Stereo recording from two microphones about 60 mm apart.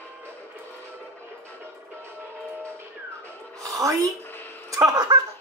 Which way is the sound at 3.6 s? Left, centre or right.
Right.